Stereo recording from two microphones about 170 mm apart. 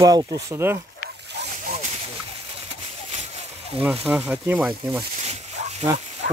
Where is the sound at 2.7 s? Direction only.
35° right (ahead or behind).